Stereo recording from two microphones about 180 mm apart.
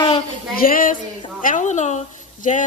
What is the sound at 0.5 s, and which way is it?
Speech, 50° left (ahead or behind).